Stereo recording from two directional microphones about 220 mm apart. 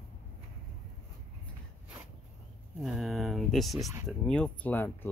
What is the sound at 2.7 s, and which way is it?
Speech, centre (ahead or behind).